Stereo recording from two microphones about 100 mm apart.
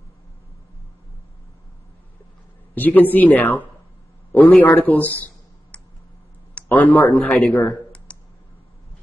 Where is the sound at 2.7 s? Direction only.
15° left (ahead or behind).